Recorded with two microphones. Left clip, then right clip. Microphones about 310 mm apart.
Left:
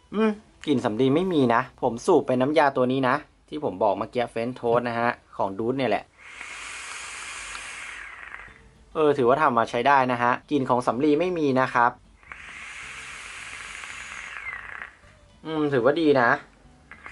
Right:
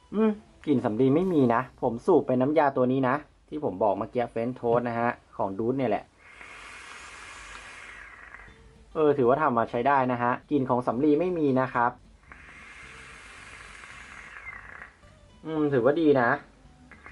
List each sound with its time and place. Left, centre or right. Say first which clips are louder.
0.1 s speech: left 2 dB; centre
3.6 s speech: left 2 dB; centre
3.9 s speech: left 2 dB; centre
5.3 s speech: left 2 dB; centre
5.8 s speech: left 4 dB; centre
6.5 s hiss: left 7 dB; centre
8.9 s speech: left 2 dB; centre
10.7 s a sound: left 3 dB; centre
15.4 s speech: left 2 dB; centre